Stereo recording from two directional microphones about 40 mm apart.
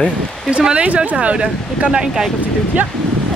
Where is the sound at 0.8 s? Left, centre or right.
Right.